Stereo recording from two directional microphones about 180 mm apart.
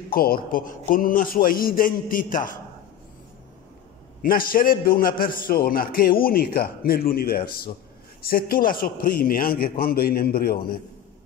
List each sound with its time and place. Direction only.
0.1 s a man's voice: 55° left (ahead or behind)
4.2 s a man's voice: 50° left (ahead or behind)